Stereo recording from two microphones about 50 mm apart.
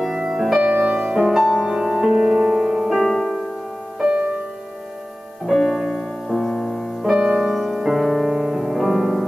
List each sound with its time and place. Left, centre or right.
0.0 s music: centre
4.0 s music: centre
5.5 s music: centre
7.5 s music: centre